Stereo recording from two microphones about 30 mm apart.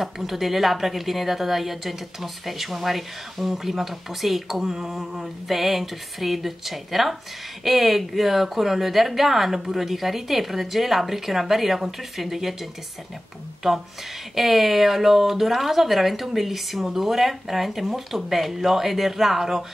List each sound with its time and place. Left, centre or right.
0.0 s speech: centre
4.6 s a sound: centre
5.2 s speech: centre
13.6 s speech: centre